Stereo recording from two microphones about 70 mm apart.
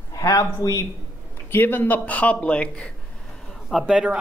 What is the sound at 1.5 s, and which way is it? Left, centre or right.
A man's voice, left.